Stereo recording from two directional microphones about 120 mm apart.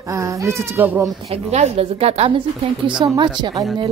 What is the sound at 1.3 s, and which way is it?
A woman's voice, 60° right (ahead or behind).